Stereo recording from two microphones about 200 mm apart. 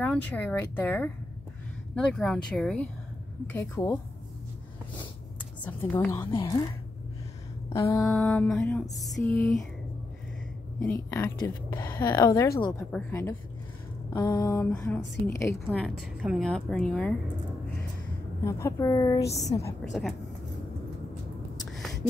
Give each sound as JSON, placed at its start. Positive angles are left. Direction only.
{"t": 0.0, "sound": "a woman's voice", "side_deg": 5}
{"t": 3.5, "sound": "speech", "side_deg": 15}
{"t": 5.6, "sound": "speech", "side_deg": 10}
{"t": 6.1, "sound": "a woman's voice", "side_deg": 20}
{"t": 7.7, "sound": "speech", "side_deg": 15}
{"t": 8.1, "sound": "a woman's voice", "side_deg": 0}
{"t": 10.9, "sound": "a woman's voice", "side_deg": 10}
{"t": 18.4, "sound": "speech", "side_deg": 15}
{"t": 19.8, "sound": "a woman's voice", "side_deg": 0}